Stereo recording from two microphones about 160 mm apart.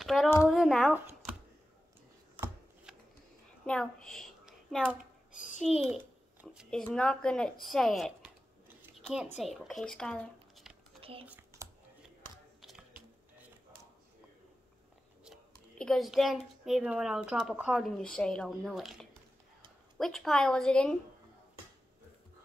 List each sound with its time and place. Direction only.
0.0 s a sound: centre (ahead or behind)
2.4 s shuffling cards: 5° right (ahead or behind)
3.6 s a woman's voice: 5° left (ahead or behind)
5.3 s a sound: 50° left (ahead or behind)
5.6 s a child's voice: 5° right (ahead or behind)
6.4 s a sound: centre (ahead or behind)
6.8 s a child's voice: 5° left (ahead or behind)
8.9 s a sound: centre (ahead or behind)
9.4 s speech: centre (ahead or behind)
11.0 s typing: 35° right (ahead or behind)
11.2 s computer keyboard: 15° right (ahead or behind)
15.8 s a child's voice: centre (ahead or behind)